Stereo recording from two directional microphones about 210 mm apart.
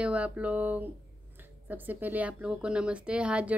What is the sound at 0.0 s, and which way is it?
A woman's voice, 5° right (ahead or behind).